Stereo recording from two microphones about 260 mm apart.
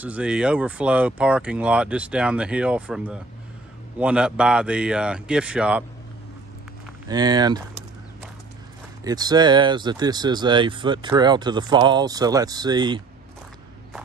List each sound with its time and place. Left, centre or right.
0.0 s speech: centre
7.1 s speech: centre
9.0 s speech: centre